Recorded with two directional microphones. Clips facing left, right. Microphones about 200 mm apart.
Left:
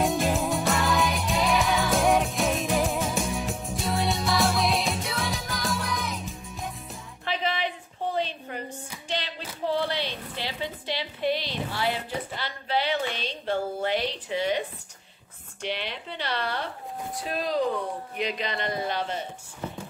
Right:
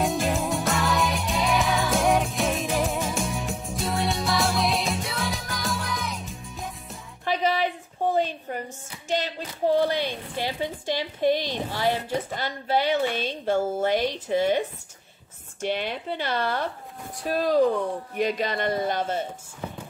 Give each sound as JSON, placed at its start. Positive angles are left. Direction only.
{"t": 0.0, "sound": "music", "side_deg": 0}
{"t": 7.2, "sound": "a sound", "side_deg": -45}
{"t": 9.0, "sound": "hands", "side_deg": -45}
{"t": 9.7, "sound": "a sound", "side_deg": -45}
{"t": 11.7, "sound": "a woman's voice", "side_deg": -45}
{"t": 15.6, "sound": "a woman's voice", "side_deg": -45}